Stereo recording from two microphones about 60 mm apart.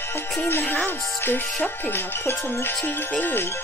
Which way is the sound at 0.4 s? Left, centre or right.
Left.